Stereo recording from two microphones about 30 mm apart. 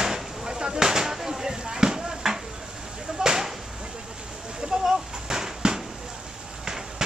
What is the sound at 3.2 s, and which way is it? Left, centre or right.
Chop, centre.